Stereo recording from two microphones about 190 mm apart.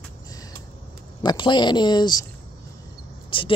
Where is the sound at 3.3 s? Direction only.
25° left (ahead or behind).